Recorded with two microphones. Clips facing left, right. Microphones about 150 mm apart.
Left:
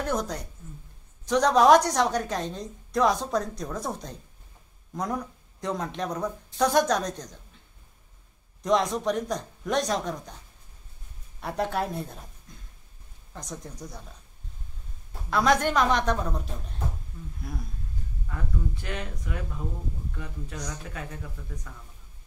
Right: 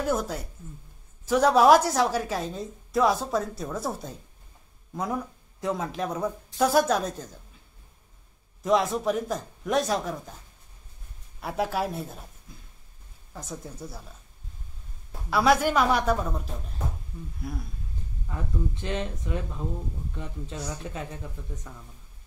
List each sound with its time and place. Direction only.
0.0 s a woman's voice: 5° right (ahead or behind)
8.6 s a woman's voice: 5° right (ahead or behind)
11.4 s a woman's voice: 5° right (ahead or behind)
15.2 s a woman's voice: 5° right (ahead or behind)
18.3 s speech: 20° right (ahead or behind)